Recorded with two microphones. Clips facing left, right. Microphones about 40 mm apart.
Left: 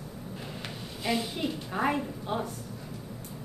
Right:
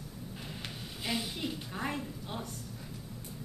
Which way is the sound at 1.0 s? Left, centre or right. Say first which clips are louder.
Left 6 dB; centre.